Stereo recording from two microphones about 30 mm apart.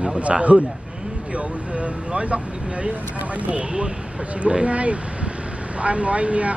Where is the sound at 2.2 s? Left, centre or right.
Right.